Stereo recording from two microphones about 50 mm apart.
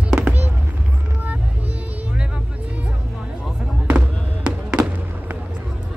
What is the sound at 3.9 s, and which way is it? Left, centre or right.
Music, centre.